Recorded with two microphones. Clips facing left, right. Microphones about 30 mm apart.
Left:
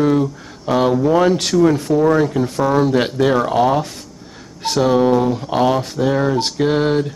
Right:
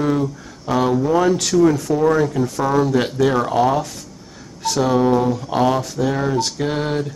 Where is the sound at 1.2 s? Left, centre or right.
Left.